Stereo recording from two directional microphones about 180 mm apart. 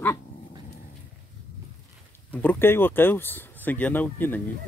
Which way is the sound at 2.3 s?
10° left (ahead or behind).